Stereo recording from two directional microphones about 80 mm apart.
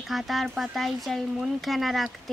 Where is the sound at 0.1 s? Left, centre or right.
Centre.